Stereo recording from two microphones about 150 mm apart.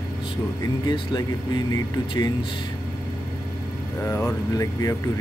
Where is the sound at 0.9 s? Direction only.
25° left (ahead or behind).